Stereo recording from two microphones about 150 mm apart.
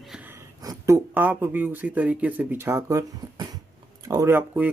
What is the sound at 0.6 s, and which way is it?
Speech, 20° right (ahead or behind).